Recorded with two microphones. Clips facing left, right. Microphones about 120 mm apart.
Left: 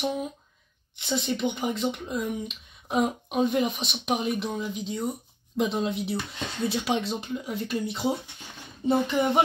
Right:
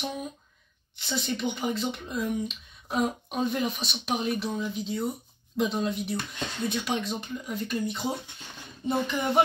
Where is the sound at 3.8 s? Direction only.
20° left (ahead or behind).